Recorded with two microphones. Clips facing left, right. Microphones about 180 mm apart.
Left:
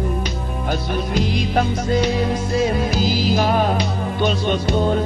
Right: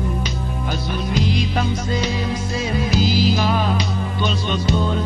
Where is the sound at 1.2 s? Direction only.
50° left (ahead or behind).